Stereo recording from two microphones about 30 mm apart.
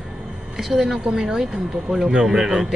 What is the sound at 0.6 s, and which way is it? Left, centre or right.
A woman's voice, centre.